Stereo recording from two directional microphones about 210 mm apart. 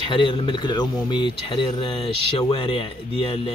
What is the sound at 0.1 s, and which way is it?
Speech, 25° left (ahead or behind).